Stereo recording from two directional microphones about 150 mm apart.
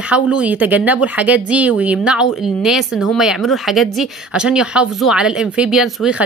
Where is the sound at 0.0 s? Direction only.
10° right (ahead or behind).